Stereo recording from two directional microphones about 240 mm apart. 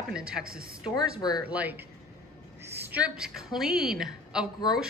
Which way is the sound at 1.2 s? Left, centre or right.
Centre.